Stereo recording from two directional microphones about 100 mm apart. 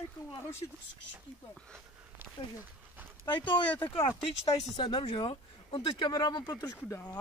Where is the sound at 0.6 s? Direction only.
45° left (ahead or behind).